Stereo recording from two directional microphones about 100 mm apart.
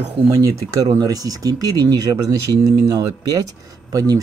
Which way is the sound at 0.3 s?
35° right (ahead or behind).